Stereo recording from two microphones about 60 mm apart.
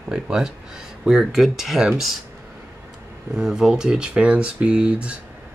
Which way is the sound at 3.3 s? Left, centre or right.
Centre.